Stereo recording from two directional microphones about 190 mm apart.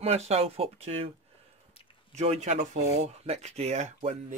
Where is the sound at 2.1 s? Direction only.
35° right (ahead or behind).